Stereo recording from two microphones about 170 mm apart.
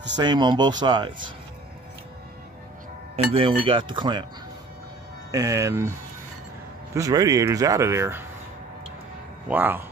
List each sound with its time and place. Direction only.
0.2 s speech: 25° right (ahead or behind)
3.3 s speech: 30° right (ahead or behind)
5.3 s speech: 20° right (ahead or behind)
9.5 s speech: 10° right (ahead or behind)